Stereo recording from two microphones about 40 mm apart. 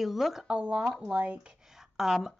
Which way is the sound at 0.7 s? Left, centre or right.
Centre.